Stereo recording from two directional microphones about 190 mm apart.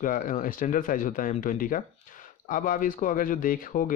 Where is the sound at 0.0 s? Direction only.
45° left (ahead or behind).